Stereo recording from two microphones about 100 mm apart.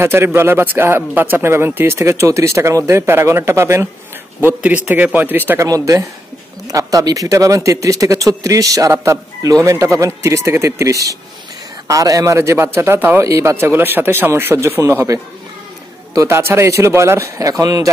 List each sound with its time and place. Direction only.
0.0 s speech: 25° right (ahead or behind)
5.7 s speech: 35° right (ahead or behind)
16.2 s speech: 25° right (ahead or behind)